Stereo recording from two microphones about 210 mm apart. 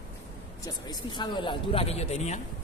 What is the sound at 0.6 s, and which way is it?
A man's voice, 20° left (ahead or behind).